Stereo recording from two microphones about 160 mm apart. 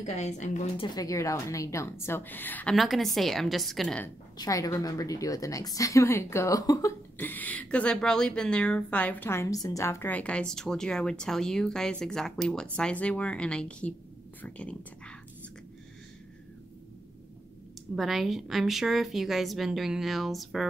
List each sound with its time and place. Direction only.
0.0 s a woman's voice: 45° left (ahead or behind)
0.7 s a woman's voice: 25° left (ahead or behind)
2.7 s speech: centre (ahead or behind)
4.4 s a woman's voice: 20° left (ahead or behind)
7.2 s a woman's voice: 10° left (ahead or behind)
17.9 s speech: centre (ahead or behind)